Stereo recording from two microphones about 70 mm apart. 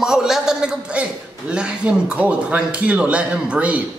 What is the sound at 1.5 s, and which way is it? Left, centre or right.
A man's voice, centre.